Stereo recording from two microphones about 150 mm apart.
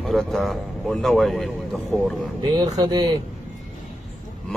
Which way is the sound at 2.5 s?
25° right (ahead or behind).